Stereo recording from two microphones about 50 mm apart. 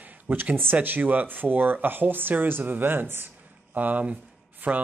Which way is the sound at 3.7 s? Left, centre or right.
Right.